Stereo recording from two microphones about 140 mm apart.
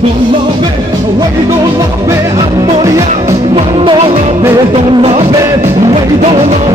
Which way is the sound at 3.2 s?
45° right (ahead or behind).